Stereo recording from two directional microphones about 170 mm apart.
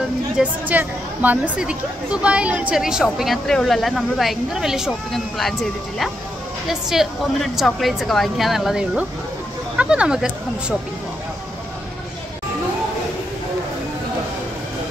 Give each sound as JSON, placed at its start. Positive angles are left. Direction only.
{"t": 0.4, "sound": "a woman's voice", "side_deg": -10}